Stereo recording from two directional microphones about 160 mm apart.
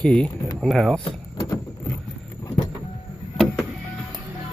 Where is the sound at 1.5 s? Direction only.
20° left (ahead or behind).